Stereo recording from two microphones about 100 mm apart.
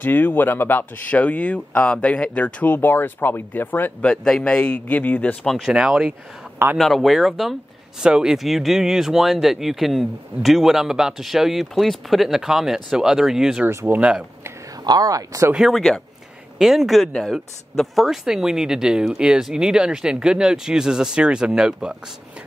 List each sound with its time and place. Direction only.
0.0 s speech: 20° left (ahead or behind)
4.1 s a man's voice: 5° left (ahead or behind)
5.7 s speech: 10° right (ahead or behind)
13.7 s speech: 25° right (ahead or behind)
13.9 s speech: 10° right (ahead or behind)
14.9 s speech: 40° right (ahead or behind)
15.5 s speech: centre (ahead or behind)